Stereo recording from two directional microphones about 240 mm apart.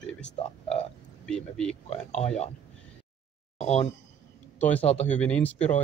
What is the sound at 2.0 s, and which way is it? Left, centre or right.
Speech, left.